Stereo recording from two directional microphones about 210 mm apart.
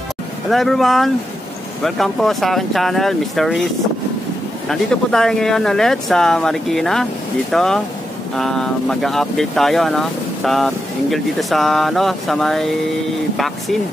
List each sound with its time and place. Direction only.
0.5 s speech: centre (ahead or behind)
4.6 s speech: centre (ahead or behind)